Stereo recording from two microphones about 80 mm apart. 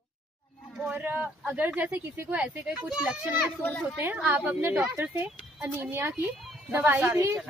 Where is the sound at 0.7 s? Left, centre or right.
Centre.